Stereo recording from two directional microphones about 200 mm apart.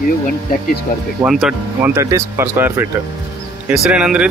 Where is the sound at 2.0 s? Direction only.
15° right (ahead or behind).